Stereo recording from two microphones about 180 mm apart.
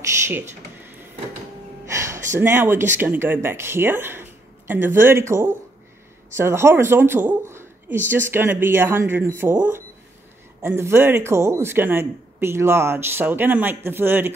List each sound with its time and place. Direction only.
0.0 s a man's voice: 15° right (ahead or behind)
1.9 s a sound: 15° right (ahead or behind)
2.3 s a man's voice: 15° right (ahead or behind)